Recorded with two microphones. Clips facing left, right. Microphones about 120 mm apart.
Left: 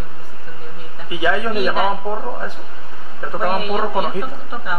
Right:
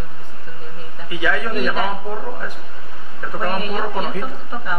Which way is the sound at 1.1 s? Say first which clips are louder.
Left 3 dB; 25° left (ahead or behind).